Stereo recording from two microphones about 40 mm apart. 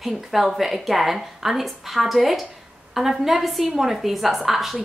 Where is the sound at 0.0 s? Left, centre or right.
Centre.